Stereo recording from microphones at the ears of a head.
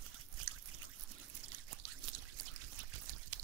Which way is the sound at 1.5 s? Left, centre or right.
Right.